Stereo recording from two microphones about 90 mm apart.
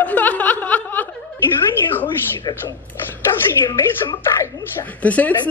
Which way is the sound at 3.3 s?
90° left.